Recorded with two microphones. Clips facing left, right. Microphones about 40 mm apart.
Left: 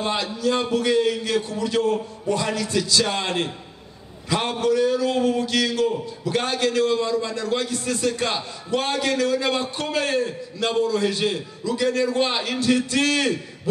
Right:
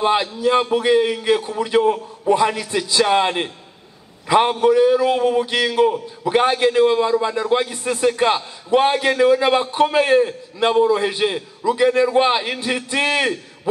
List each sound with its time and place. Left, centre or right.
0.0 s a man's voice: right